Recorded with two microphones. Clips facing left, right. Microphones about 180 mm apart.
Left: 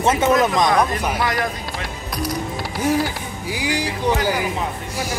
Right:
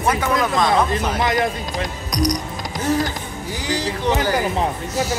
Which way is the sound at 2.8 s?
10° left (ahead or behind).